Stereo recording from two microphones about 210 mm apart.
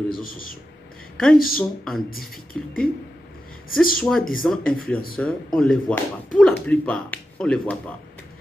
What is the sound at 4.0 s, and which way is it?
Speech, 5° left (ahead or behind).